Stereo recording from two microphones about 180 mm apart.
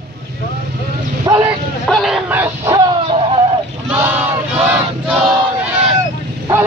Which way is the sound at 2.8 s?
30° right (ahead or behind).